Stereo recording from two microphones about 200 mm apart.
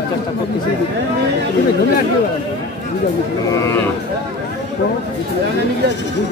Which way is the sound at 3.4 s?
15° left (ahead or behind).